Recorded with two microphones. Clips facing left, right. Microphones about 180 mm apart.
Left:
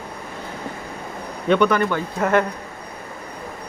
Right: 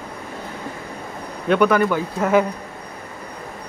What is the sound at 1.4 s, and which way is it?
Speech, 5° right (ahead or behind).